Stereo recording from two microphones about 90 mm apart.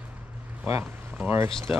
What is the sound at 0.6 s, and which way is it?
Speech, 20° right (ahead or behind).